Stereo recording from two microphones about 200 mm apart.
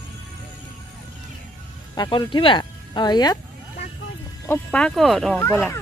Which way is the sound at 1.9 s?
20° left (ahead or behind).